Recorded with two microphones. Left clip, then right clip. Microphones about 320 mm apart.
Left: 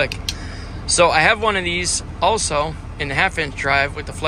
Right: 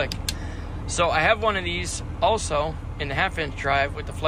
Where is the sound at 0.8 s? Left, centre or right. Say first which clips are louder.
Left 6 dB; centre.